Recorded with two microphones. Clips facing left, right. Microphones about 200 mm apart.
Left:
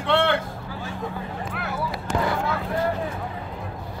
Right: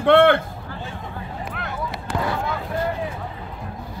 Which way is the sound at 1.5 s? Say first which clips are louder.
Left 1 dB; 5° left (ahead or behind).